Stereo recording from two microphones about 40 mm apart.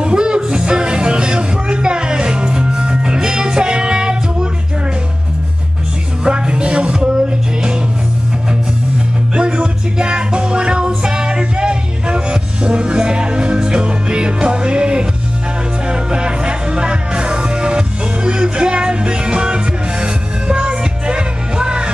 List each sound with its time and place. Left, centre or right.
0.0 s music: right
6.2 s music: right
9.3 s music: right